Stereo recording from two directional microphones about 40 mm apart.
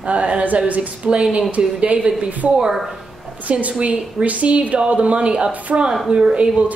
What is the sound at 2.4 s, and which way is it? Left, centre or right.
Speech, right.